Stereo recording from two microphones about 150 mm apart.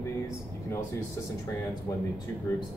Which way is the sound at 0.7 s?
20° left (ahead or behind).